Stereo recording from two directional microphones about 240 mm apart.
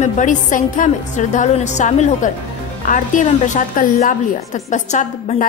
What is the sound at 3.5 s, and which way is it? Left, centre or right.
A woman's voice, left.